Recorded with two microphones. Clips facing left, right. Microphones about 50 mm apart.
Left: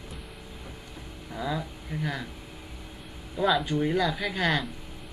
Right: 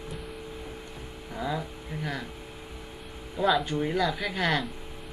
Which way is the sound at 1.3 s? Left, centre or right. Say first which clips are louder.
Even; centre.